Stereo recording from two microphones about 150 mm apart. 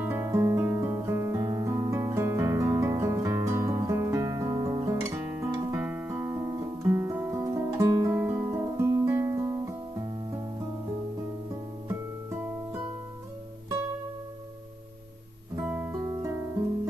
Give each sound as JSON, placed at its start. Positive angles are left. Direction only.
{"t": 0.0, "sound": "guitar", "side_deg": -15}
{"t": 11.9, "sound": "music", "side_deg": -15}
{"t": 15.5, "sound": "music", "side_deg": -10}
{"t": 16.0, "sound": "music", "side_deg": -20}